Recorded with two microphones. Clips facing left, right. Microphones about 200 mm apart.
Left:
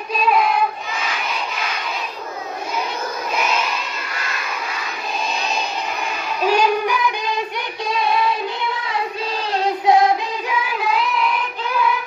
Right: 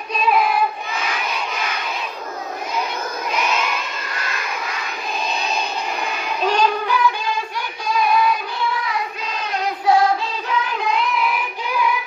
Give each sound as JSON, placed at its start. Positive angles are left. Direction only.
{"t": 0.1, "sound": "child singing", "side_deg": 0}
{"t": 6.4, "sound": "child singing", "side_deg": 10}
{"t": 9.5, "sound": "child singing", "side_deg": 25}
{"t": 10.7, "sound": "music", "side_deg": 5}